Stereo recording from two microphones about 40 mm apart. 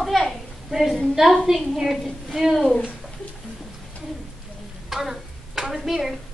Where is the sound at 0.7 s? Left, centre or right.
Centre.